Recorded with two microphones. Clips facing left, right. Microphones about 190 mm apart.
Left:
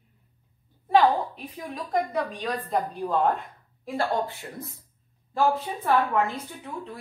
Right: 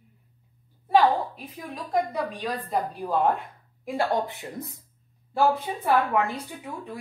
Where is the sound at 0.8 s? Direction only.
5° right (ahead or behind).